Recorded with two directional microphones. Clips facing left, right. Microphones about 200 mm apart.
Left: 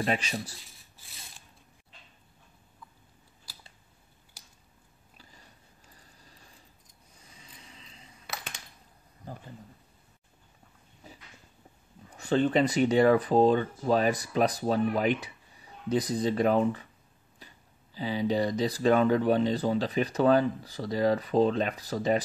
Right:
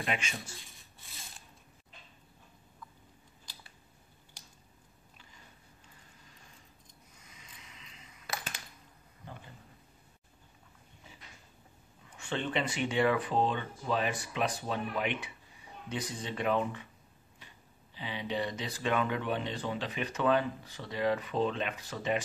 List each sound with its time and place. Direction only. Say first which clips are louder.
0.0 s speech: left 6 dB; 35° left (ahead or behind)
3.5 s scissors: left 1 dB; 5° left (ahead or behind)
5.1 s a sound: left 3 dB; 35° left (ahead or behind)
11.1 s a sound: left 7 dB; 40° left (ahead or behind)
12.1 s speech: left 10 dB; 40° left (ahead or behind)
17.9 s speech: left 8 dB; 40° left (ahead or behind)